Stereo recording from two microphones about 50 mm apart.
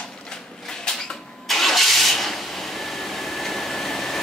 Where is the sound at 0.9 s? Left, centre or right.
Centre.